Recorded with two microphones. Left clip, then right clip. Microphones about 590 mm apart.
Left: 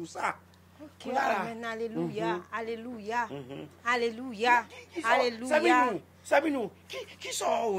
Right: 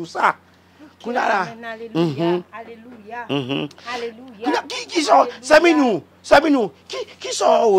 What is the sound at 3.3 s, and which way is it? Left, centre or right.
Speech, right.